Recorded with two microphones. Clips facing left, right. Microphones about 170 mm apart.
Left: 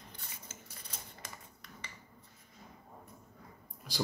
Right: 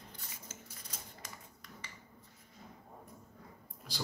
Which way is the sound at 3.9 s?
15° left (ahead or behind).